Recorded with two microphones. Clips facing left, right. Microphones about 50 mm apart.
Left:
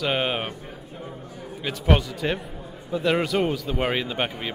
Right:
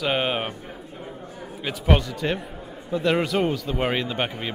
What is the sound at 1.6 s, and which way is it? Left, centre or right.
Speech, centre.